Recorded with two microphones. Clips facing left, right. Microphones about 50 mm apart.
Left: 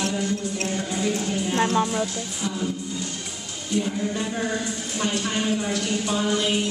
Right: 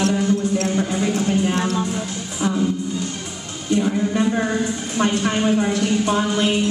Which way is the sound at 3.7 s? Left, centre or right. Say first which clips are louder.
Right 6 dB; right.